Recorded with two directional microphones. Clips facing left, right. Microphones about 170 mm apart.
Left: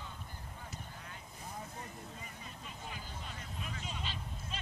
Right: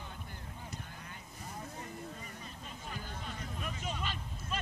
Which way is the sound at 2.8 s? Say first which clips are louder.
Right 4 dB; 50° right (ahead or behind).